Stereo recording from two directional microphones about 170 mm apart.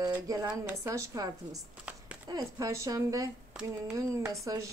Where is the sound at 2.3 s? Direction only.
20° right (ahead or behind).